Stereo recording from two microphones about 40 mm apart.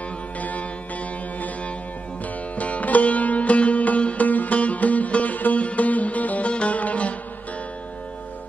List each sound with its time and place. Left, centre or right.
0.4 s music: left
2.5 s music: left